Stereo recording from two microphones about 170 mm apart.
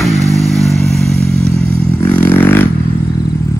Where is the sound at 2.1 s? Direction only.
10° left (ahead or behind).